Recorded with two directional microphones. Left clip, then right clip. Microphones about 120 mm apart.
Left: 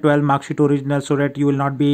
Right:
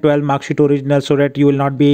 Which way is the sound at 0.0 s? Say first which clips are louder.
Right 2 dB; 35° right (ahead or behind).